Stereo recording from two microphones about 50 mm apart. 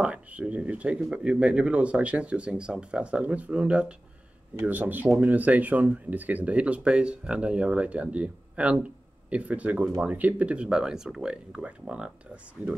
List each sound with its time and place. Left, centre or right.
0.0 s speech: right
4.6 s speech: right; by 11.3 s centre
11.6 s speech: right